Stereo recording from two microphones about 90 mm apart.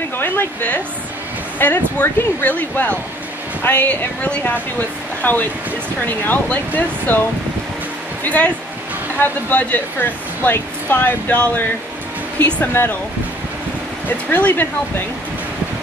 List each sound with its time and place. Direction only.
0.2 s speech: 25° left (ahead or behind)
8.2 s speech: 15° left (ahead or behind)
14.0 s speech: 20° left (ahead or behind)